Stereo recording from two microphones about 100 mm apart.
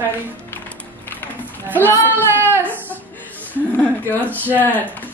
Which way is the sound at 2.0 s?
20° right (ahead or behind).